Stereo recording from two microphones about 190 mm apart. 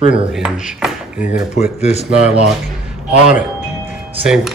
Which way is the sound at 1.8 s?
35° left (ahead or behind).